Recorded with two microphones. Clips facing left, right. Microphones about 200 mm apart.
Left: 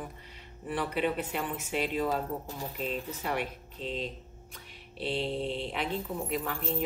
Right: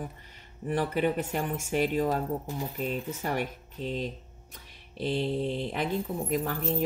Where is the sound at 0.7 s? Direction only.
40° right (ahead or behind).